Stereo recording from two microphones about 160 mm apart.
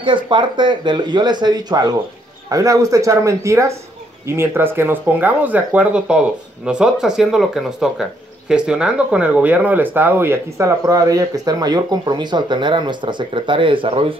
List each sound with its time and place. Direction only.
0.0 s speech: 30° right (ahead or behind)